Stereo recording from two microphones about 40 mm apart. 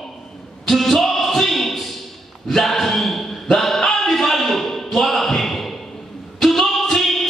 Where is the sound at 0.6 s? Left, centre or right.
Centre.